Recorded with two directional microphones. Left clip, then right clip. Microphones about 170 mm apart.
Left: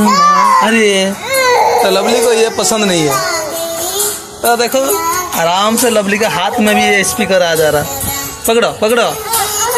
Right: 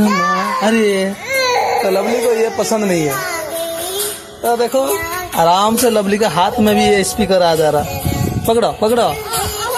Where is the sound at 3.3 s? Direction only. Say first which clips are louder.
Left 3 dB; 20° right (ahead or behind).